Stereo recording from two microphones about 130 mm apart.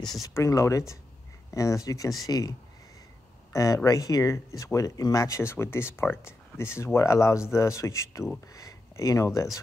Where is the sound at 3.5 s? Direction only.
25° left (ahead or behind).